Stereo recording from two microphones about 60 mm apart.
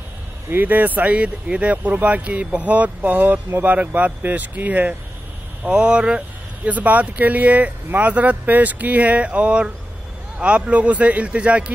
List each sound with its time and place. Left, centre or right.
0.5 s speech: right
5.6 s speech: centre